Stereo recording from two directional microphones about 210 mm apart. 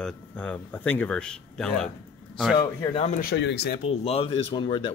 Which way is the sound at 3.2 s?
55° left (ahead or behind).